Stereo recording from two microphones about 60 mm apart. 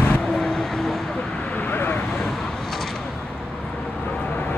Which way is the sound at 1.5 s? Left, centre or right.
Left.